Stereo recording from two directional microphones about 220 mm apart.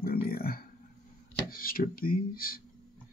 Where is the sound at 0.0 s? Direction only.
45° left (ahead or behind).